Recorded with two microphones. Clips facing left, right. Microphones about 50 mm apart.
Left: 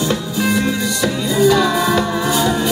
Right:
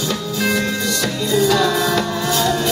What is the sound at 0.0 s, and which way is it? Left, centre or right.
Music, left.